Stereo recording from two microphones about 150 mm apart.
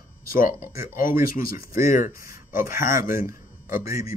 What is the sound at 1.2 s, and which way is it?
Speech, 75° left (ahead or behind).